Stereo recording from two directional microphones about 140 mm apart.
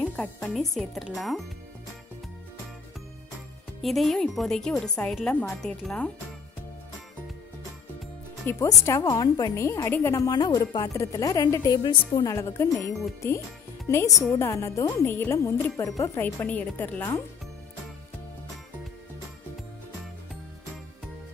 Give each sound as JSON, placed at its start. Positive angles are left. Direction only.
{"t": 0.0, "sound": "speech", "side_deg": 5}
{"t": 3.8, "sound": "speech", "side_deg": 0}
{"t": 8.5, "sound": "a woman's voice", "side_deg": 20}
{"t": 13.8, "sound": "a woman's voice", "side_deg": 20}